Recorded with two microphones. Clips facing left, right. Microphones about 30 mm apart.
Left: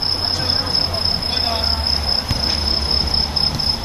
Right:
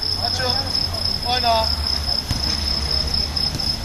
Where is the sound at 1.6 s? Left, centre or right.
Left.